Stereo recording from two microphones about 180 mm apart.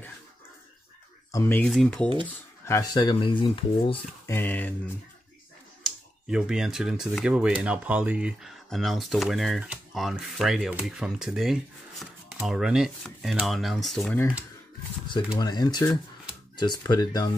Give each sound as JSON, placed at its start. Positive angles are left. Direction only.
{"t": 1.3, "sound": "speech", "side_deg": 10}
{"t": 2.6, "sound": "speech", "side_deg": 20}
{"t": 4.3, "sound": "speech", "side_deg": 10}
{"t": 5.9, "sound": "speech", "side_deg": -5}
{"t": 15.3, "sound": "speech", "side_deg": 20}